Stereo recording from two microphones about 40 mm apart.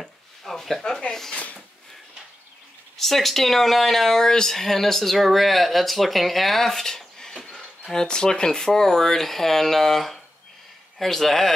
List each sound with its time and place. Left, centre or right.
0.0 s speech: centre
1.3 s a sound: left
3.0 s speech: centre